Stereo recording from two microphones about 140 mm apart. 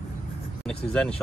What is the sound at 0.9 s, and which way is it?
Speech, 5° left (ahead or behind).